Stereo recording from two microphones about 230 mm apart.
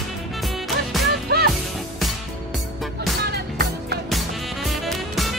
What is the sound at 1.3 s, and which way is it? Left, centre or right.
Music, right.